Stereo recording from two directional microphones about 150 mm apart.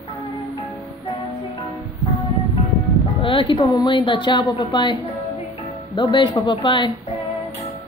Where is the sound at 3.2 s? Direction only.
35° left (ahead or behind).